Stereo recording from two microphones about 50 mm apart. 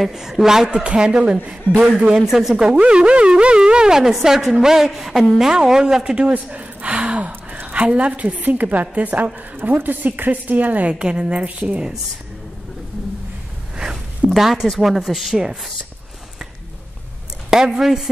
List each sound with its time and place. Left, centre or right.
0.1 s a man's voice: centre
2.6 s speech: centre
5.5 s speech: centre
6.3 s a man's voice: right
10.9 s a man's voice: centre
14.3 s speech: centre
17.5 s speech: centre